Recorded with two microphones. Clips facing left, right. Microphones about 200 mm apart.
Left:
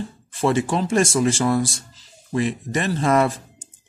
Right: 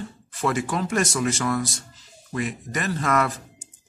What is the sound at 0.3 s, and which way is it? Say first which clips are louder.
A man's voice: left 5 dB; 25° left (ahead or behind).